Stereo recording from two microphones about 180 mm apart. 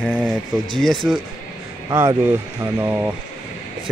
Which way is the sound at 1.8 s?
20° right (ahead or behind).